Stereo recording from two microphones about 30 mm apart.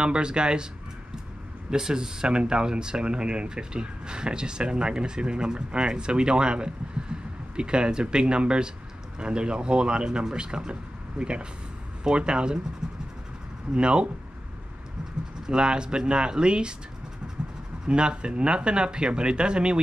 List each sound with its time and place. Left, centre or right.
0.0 s speech: right
1.8 s speech: centre
2.2 s speech: right
12.8 s vehicle: right
13.7 s speech: right
15.4 s speech: right
17.8 s speech: right